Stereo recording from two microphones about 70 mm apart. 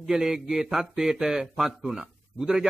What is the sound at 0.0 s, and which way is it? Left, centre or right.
A man's voice, centre.